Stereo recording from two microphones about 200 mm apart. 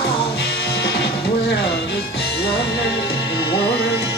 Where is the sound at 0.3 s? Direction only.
55° left (ahead or behind).